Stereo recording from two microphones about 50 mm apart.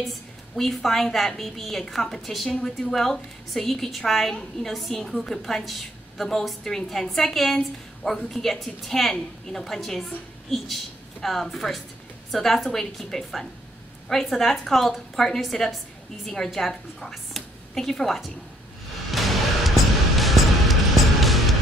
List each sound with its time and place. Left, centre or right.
0.6 s a woman's voice: centre
19.1 s music: centre